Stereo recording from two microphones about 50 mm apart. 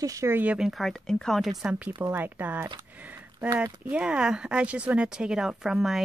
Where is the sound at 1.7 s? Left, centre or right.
Right.